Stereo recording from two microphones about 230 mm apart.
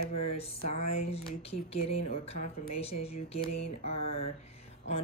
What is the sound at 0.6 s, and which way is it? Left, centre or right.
Speech, left.